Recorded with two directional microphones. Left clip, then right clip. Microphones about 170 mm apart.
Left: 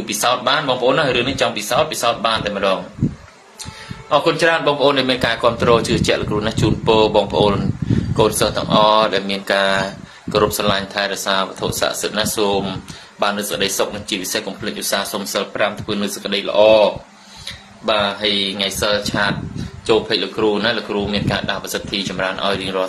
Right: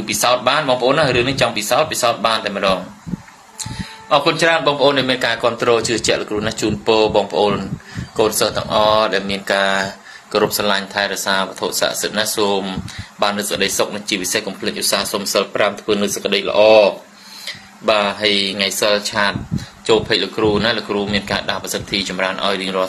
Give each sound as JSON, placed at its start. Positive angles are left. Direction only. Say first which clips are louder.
{"t": 0.0, "sound": "speech", "louder": "right 2 dB", "side_deg": -15}
{"t": 4.1, "sound": "speech", "louder": "right 1 dB", "side_deg": -15}
{"t": 4.7, "sound": "a man's voice", "louder": "right 1 dB", "side_deg": 0}
{"t": 17.8, "sound": "speech", "louder": "right 2 dB", "side_deg": -15}